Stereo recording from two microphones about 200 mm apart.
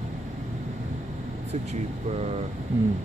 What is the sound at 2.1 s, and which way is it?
Speech, 30° right (ahead or behind).